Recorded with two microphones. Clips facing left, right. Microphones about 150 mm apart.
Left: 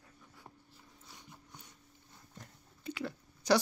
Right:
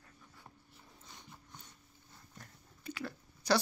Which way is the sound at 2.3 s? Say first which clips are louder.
Left 2 dB; 20° left (ahead or behind).